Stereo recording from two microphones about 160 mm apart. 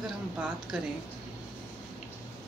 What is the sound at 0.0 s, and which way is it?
Speech, centre (ahead or behind).